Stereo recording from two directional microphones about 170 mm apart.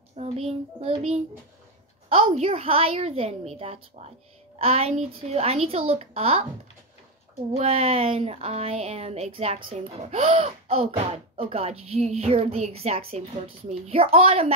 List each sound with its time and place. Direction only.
0.2 s speech: 40° right (ahead or behind)
2.0 s speech: 35° right (ahead or behind)
7.5 s speech: 40° right (ahead or behind)